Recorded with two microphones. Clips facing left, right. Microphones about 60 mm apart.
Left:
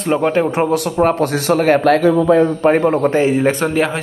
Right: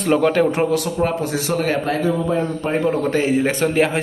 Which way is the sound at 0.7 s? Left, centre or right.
Left.